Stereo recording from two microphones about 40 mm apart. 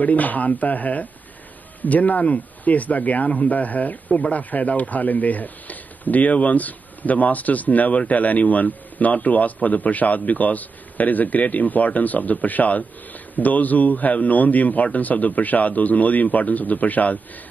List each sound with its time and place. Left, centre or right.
0.0 s a man's voice: left